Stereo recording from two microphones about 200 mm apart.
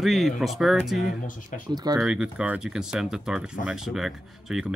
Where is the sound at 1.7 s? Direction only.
20° right (ahead or behind).